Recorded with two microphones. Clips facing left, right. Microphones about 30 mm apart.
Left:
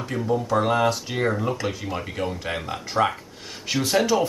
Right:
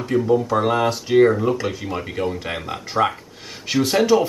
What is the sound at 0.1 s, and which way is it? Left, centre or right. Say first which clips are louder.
Speech: right 5 dB; centre.